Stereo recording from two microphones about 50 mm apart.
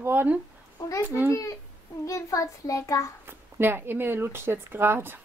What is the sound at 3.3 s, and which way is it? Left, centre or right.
Speech, right.